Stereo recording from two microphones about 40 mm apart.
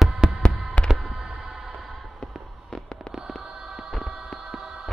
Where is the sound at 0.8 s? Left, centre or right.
Left.